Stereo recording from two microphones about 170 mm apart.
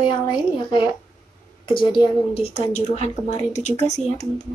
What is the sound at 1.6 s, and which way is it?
A woman's voice, 30° left (ahead or behind).